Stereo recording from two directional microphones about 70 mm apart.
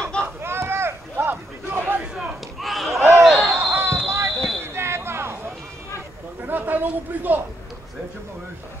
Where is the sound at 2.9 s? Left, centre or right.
Right.